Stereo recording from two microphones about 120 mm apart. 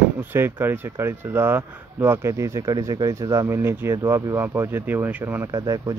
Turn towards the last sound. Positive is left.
turn(degrees=-30)  # may be behind; listen again after turning